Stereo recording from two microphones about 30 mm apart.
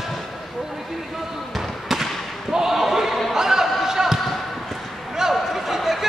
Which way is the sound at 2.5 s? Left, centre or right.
Centre.